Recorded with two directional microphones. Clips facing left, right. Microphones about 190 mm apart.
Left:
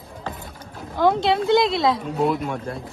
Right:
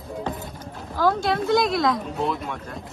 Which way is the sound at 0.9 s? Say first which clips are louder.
Left 3 dB; 20° left (ahead or behind).